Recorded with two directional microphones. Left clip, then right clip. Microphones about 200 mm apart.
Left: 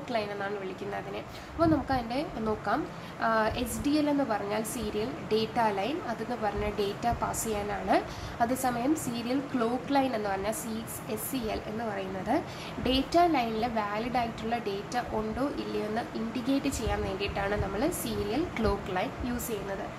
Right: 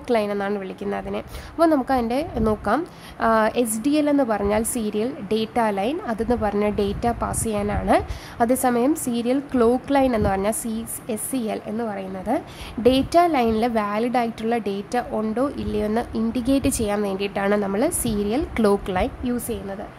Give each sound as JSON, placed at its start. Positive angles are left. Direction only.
{"t": 0.1, "sound": "speech", "side_deg": -50}
{"t": 12.8, "sound": "speech", "side_deg": -50}